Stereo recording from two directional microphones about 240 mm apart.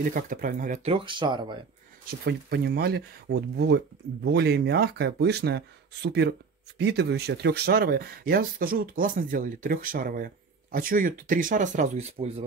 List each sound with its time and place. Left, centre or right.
0.1 s speech: right; by 1.6 s centre
2.0 s speech: right